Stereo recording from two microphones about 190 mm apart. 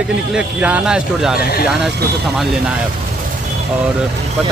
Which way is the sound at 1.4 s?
50° left (ahead or behind).